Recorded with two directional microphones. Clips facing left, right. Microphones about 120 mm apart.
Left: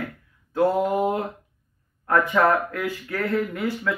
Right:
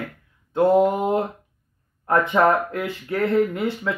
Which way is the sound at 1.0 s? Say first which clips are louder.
Right 2 dB; 30° right (ahead or behind).